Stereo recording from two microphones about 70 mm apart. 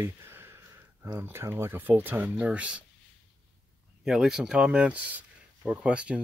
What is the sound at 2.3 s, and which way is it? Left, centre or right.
Speech, centre.